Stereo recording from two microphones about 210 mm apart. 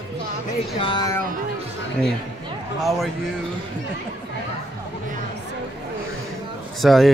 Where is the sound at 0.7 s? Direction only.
20° left (ahead or behind).